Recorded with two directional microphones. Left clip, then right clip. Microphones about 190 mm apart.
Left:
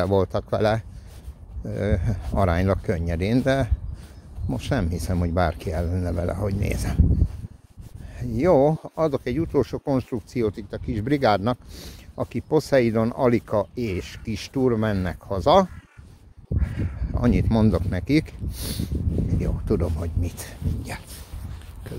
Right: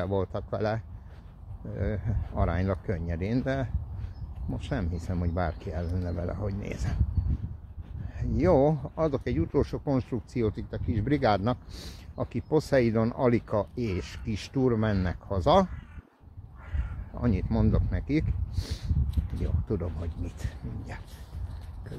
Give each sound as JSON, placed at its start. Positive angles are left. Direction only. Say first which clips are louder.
{"t": 0.0, "sound": "speech", "louder": "left 9 dB", "side_deg": 40}
{"t": 8.2, "sound": "speech", "louder": "left 5 dB", "side_deg": 35}
{"t": 17.1, "sound": "speech", "louder": "left 8 dB", "side_deg": 35}